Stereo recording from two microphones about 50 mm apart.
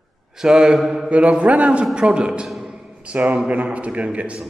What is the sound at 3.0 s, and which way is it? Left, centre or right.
A man's voice, right.